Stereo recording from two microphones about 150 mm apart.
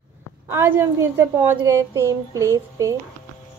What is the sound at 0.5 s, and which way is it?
A woman's voice, 15° right (ahead or behind).